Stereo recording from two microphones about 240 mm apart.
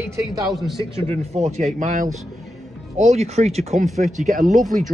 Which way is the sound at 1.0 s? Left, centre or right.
Right.